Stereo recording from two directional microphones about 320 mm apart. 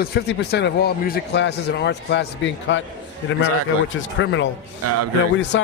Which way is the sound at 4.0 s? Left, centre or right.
Left.